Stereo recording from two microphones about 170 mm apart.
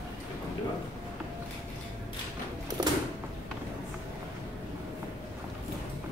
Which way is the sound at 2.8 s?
25° right (ahead or behind).